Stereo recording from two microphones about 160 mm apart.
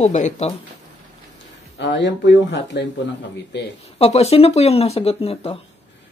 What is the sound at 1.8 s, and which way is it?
Speech, 90° left.